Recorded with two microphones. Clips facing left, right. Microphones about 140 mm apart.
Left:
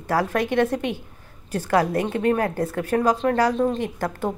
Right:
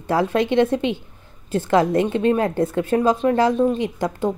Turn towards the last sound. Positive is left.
turn(degrees=-15)  # may be behind; listen again after turning